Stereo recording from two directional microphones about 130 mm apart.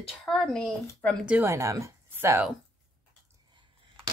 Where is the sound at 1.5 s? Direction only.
20° right (ahead or behind).